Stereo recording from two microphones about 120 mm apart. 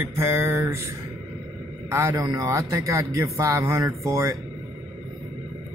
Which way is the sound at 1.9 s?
25° right (ahead or behind).